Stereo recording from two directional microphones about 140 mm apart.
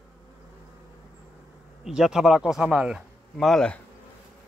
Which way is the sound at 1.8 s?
5° right (ahead or behind).